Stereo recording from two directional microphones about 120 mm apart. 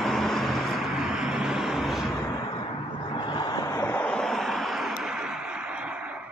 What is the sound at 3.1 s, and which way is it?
Vehicle, 35° left (ahead or behind).